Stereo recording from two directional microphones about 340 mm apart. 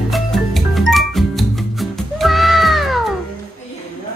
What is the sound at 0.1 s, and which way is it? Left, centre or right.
Music, centre.